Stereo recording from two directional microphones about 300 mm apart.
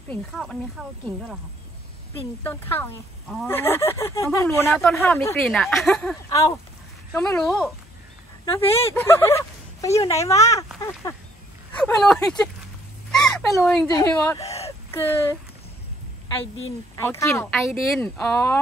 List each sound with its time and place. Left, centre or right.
0.1 s speech: centre
2.4 s speech: centre
8.5 s speech: centre
8.9 s speech: centre
13.1 s a sound: centre
13.8 s speech: centre
14.4 s a sound: left
14.9 s speech: centre
16.9 s speech: centre